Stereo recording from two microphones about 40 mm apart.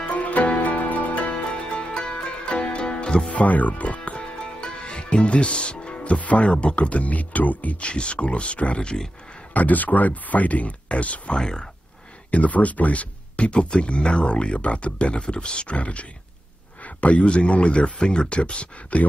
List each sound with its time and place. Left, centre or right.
0.1 s music: left
1.8 s music: left
3.3 s speech: left
8.8 s speech: centre
9.5 s speech: left
11.4 s speech: centre
12.3 s speech: left